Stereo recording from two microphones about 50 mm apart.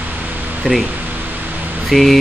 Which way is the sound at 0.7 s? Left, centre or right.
Right.